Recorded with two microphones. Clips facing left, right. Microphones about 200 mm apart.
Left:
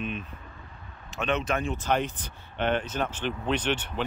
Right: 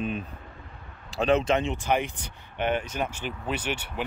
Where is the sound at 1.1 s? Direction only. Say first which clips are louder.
Right 5 dB; 35° right (ahead or behind).